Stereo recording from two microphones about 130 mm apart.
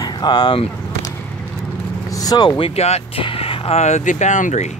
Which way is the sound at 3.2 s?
45° left (ahead or behind).